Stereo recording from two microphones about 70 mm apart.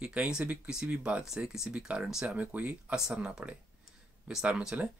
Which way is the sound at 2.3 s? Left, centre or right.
Right.